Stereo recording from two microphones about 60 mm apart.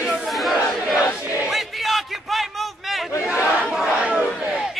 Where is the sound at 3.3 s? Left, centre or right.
Centre.